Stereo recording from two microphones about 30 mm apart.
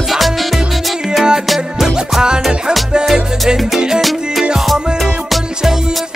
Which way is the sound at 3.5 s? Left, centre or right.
Right.